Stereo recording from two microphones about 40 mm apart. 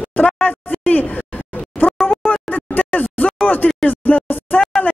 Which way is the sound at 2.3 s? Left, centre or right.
Left.